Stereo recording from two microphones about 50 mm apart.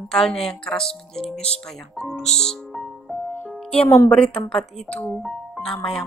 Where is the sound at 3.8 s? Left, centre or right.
Left.